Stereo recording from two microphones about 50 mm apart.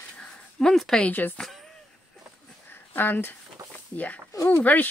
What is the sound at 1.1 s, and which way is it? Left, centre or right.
Speech, left.